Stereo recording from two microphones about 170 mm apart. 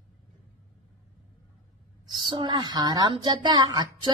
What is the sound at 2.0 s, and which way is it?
A woman's voice, 30° right (ahead or behind).